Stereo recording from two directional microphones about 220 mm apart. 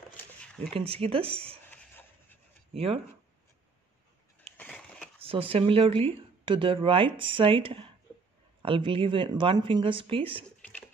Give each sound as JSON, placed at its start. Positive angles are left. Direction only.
{"t": 0.7, "sound": "speech", "side_deg": -25}
{"t": 1.7, "sound": "a sound", "side_deg": 10}
{"t": 2.7, "sound": "speech", "side_deg": -25}
{"t": 4.6, "sound": "crushing", "side_deg": 5}
{"t": 5.2, "sound": "speech", "side_deg": -25}